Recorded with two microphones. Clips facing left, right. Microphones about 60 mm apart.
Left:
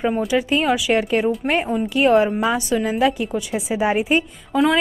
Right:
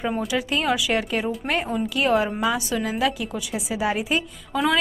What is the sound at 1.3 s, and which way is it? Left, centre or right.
A woman's voice, centre.